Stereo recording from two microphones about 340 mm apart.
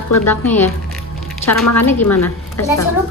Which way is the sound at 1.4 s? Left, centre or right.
Left.